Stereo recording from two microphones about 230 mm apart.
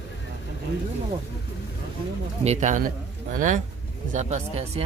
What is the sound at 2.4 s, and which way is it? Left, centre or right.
A man's voice, right.